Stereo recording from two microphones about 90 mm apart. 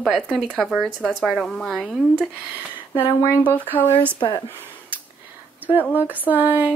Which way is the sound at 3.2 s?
35° left (ahead or behind).